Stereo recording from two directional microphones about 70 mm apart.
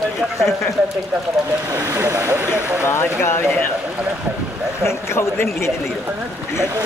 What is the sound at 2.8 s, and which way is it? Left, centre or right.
Speech, left.